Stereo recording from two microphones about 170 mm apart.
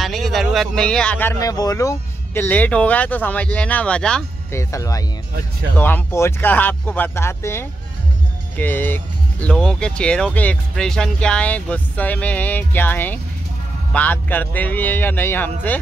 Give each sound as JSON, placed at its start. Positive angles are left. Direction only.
{"t": 0.0, "sound": "a sound", "side_deg": 0}
{"t": 1.4, "sound": "speech", "side_deg": 20}
{"t": 4.6, "sound": "speech", "side_deg": 20}